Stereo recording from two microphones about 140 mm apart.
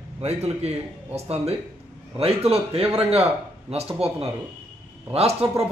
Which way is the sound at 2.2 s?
45° right (ahead or behind).